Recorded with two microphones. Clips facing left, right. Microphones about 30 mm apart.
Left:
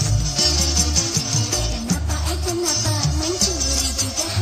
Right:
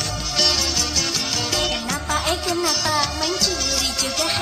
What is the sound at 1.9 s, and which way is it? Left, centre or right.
Music, right.